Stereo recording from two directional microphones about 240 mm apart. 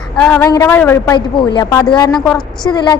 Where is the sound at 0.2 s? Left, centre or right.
Centre.